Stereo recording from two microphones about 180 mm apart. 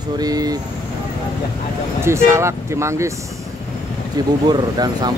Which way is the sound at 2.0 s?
15° right (ahead or behind).